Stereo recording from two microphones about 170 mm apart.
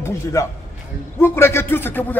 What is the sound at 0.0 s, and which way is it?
A man's voice, 20° left (ahead or behind).